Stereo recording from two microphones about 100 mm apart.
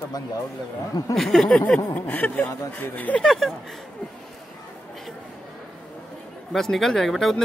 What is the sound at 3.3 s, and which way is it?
Speech, centre (ahead or behind).